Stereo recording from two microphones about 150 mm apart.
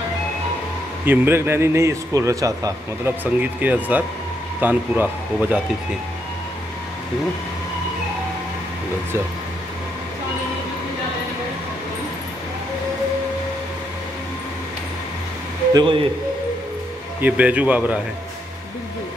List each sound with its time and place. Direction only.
1.0 s a man's voice: 15° right (ahead or behind)
3.3 s a man's voice: 10° right (ahead or behind)
15.7 s speech: 30° right (ahead or behind)
17.2 s a man's voice: 10° right (ahead or behind)